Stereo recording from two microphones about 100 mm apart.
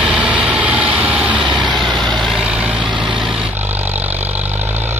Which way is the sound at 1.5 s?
50° right (ahead or behind).